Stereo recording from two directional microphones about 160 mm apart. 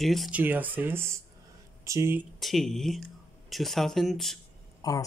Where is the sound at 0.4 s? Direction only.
10° right (ahead or behind).